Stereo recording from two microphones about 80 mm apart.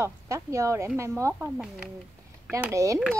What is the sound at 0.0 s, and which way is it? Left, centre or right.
A woman's voice, right.